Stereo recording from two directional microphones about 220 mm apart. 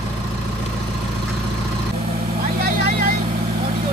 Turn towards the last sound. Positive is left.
turn(degrees=-45)  # may be behind; listen again after turning